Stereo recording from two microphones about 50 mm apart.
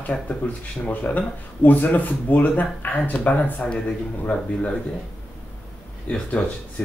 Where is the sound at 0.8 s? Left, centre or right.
Left.